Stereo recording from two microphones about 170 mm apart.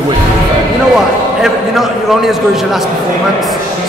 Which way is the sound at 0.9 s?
Centre (ahead or behind).